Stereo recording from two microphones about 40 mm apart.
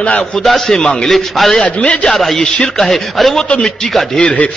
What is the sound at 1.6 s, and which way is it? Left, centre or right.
Speech, left.